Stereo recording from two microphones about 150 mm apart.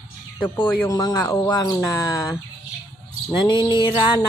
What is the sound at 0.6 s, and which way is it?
Speech, 25° left (ahead or behind).